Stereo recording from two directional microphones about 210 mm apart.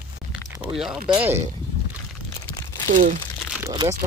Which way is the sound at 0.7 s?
Centre (ahead or behind).